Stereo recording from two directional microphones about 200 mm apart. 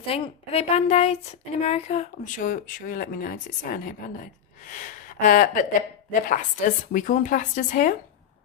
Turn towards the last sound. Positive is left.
turn(degrees=40)  # may be behind; listen again after turning